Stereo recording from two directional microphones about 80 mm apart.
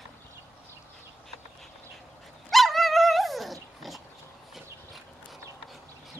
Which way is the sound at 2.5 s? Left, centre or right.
Centre.